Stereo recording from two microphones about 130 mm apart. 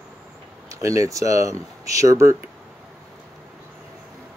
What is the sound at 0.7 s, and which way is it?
Speech, 25° right (ahead or behind).